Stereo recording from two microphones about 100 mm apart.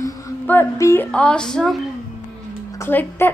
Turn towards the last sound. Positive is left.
turn(degrees=20)  # may be behind; listen again after turning